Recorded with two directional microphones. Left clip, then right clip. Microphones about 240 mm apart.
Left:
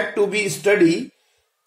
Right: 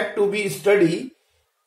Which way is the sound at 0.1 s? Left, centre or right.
Left.